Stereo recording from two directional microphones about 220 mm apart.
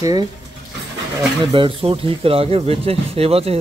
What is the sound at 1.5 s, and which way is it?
Speech, 25° right (ahead or behind).